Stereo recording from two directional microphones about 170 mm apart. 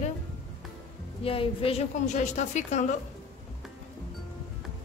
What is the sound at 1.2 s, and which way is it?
Speech, 35° left (ahead or behind).